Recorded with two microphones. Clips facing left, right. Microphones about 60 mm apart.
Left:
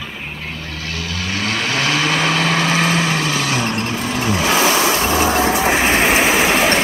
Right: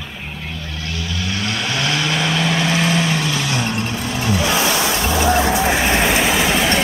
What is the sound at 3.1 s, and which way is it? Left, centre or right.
Vehicle, left.